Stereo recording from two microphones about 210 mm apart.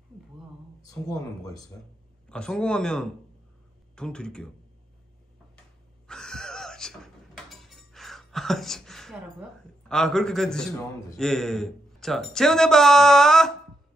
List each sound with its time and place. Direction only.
0.8 s speech: 15° left (ahead or behind)
2.2 s a man's voice: 5° left (ahead or behind)
6.0 s a sound: 5° left (ahead or behind)
11.1 s a man's voice: centre (ahead or behind)